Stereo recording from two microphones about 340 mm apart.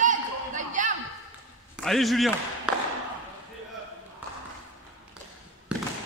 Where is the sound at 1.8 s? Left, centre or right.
Centre.